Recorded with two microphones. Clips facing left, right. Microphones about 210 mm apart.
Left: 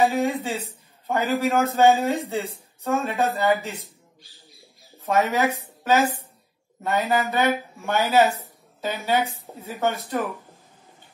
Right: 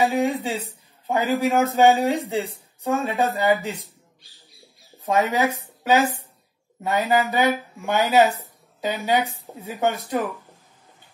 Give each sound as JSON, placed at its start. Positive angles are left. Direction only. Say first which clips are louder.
{"t": 0.1, "sound": "speech", "louder": "right 1 dB", "side_deg": -15}
{"t": 4.9, "sound": "speech", "louder": "right 1 dB", "side_deg": -15}